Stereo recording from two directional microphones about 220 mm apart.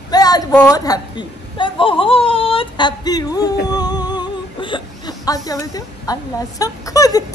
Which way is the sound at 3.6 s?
20° left (ahead or behind).